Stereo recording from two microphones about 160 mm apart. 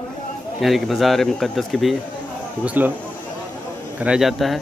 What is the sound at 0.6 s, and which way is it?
Speech, centre (ahead or behind).